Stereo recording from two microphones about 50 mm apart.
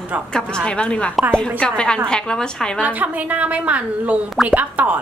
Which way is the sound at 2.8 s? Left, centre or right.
Right.